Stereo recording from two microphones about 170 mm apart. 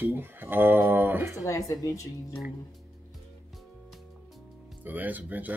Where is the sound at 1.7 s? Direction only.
20° left (ahead or behind).